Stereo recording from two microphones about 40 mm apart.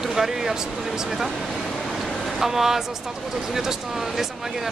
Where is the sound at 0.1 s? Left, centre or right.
Centre.